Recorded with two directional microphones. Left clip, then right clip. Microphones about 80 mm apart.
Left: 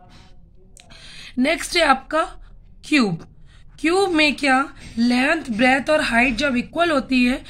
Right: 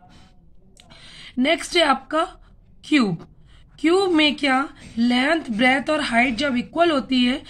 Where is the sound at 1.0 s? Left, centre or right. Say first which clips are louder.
Even; right.